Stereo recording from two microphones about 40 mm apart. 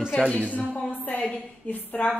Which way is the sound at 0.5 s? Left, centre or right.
Left.